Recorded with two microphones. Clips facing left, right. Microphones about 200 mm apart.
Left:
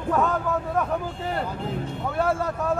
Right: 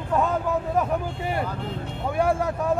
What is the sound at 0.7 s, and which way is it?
Speech, 10° right (ahead or behind).